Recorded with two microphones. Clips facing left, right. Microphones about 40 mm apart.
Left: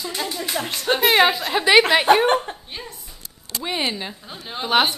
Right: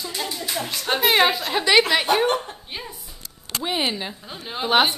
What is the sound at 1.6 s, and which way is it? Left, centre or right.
Speech, centre.